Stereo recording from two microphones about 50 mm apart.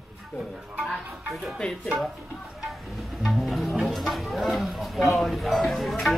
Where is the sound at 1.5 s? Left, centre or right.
Centre.